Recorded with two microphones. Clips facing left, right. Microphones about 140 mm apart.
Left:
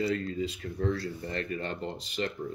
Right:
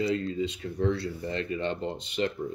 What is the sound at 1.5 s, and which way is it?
Speech, 25° right (ahead or behind).